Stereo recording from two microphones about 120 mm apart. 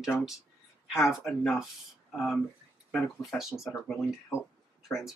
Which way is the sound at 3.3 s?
Centre (ahead or behind).